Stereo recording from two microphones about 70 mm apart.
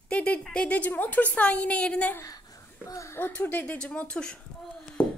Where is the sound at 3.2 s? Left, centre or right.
Left.